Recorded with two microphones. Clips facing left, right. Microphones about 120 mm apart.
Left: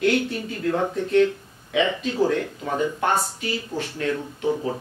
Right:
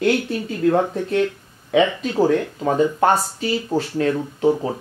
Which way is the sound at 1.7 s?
40° right (ahead or behind).